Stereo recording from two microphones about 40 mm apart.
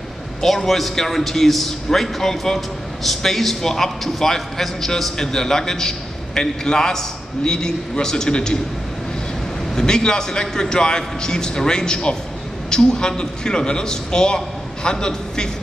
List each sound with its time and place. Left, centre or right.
0.4 s a man's voice: centre
9.8 s a man's voice: centre